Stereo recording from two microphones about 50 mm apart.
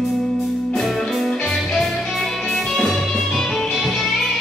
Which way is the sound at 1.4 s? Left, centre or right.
Centre.